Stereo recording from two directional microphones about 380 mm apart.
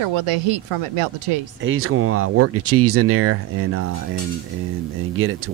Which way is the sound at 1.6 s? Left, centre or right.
Right.